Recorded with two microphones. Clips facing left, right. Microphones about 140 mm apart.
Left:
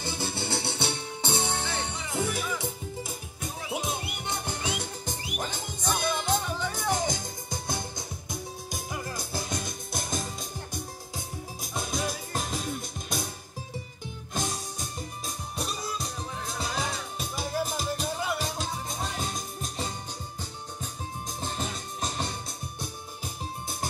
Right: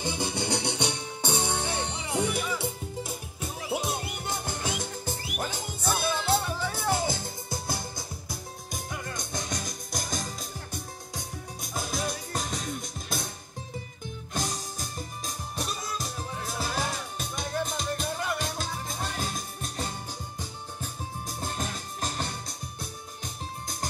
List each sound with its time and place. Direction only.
0.0 s music: 15° right (ahead or behind); by 13.3 s centre (ahead or behind)
14.3 s music: centre (ahead or behind)